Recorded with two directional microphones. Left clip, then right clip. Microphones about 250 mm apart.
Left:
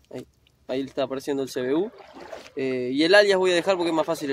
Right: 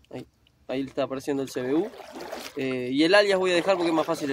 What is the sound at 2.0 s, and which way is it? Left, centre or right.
Speech, right.